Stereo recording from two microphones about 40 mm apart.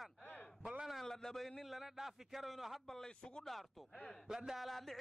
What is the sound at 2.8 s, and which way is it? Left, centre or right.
Speech, centre.